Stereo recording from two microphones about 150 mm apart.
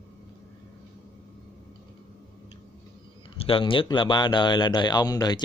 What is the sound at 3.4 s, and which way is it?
Speech, 35° left (ahead or behind).